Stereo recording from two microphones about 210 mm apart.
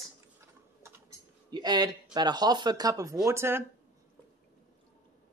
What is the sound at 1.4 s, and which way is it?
Speech, 20° right (ahead or behind).